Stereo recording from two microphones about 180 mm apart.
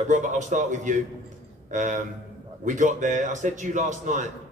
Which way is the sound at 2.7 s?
45° right (ahead or behind).